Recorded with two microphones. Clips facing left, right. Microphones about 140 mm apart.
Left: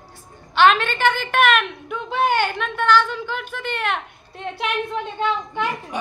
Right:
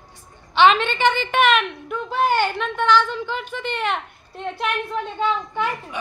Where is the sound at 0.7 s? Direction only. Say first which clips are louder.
Right 1 dB; 5° left (ahead or behind).